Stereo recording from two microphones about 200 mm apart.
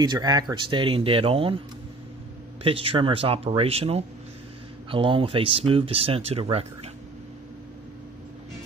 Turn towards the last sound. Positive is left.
turn(degrees=-30)  # may be behind; listen again after turning